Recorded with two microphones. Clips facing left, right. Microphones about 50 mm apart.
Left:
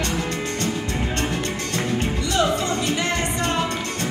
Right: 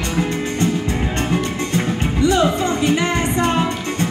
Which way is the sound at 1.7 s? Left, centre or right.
Centre.